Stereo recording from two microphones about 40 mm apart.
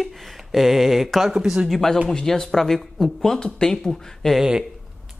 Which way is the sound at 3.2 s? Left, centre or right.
Centre.